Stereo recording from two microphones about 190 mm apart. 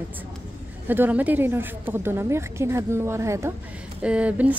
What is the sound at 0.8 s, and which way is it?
A woman's voice, 10° right (ahead or behind).